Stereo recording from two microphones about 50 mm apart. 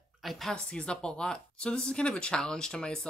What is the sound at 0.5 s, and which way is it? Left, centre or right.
Speech, centre.